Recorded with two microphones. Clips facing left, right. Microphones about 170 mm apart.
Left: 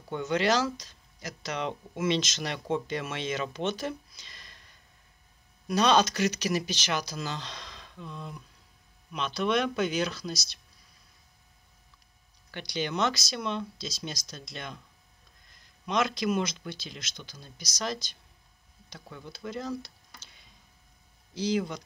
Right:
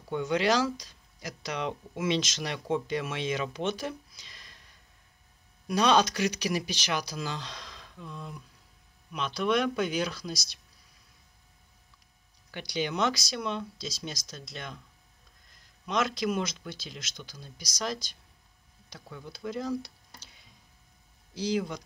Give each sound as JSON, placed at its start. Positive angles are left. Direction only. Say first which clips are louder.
{"t": 0.3, "sound": "speech", "louder": "even", "side_deg": -10}
{"t": 5.7, "sound": "speech", "louder": "even", "side_deg": -5}
{"t": 12.4, "sound": "speech", "louder": "right 1 dB", "side_deg": -10}
{"t": 15.8, "sound": "speech", "louder": "left 1 dB", "side_deg": -5}
{"t": 18.9, "sound": "speech", "louder": "even", "side_deg": 0}
{"t": 20.2, "sound": "tick-tock", "louder": "even", "side_deg": -5}
{"t": 21.5, "sound": "speech", "louder": "left 1 dB", "side_deg": 0}